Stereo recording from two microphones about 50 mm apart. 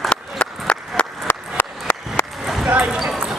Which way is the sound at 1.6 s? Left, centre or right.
Left.